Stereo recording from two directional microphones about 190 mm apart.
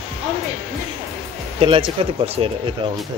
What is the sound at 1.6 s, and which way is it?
Speech, 30° right (ahead or behind).